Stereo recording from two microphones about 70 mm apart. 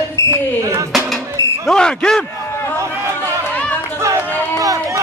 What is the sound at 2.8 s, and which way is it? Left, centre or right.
Chatter, right.